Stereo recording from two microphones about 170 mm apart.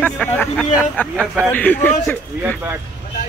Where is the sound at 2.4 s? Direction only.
15° right (ahead or behind).